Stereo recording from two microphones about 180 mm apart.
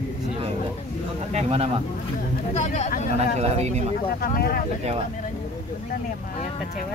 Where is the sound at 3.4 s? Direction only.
35° right (ahead or behind).